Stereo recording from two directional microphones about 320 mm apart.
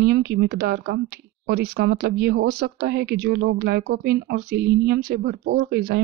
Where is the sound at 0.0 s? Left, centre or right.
Right.